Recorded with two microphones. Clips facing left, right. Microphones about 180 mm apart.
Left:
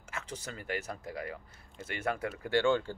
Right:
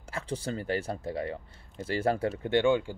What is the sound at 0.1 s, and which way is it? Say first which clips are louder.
Speech: right 8 dB; 30° right (ahead or behind).